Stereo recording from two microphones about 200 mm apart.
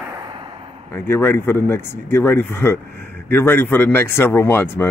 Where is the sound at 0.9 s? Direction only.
10° left (ahead or behind).